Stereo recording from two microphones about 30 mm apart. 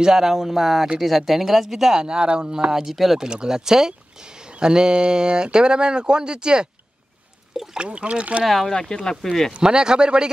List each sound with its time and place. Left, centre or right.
0.0 s speech: centre
2.0 s speech: right
2.7 s speech: centre
3.2 s speech: right
7.7 s speech: right
8.6 s speech: left
9.2 s speech: centre
9.5 s speech: right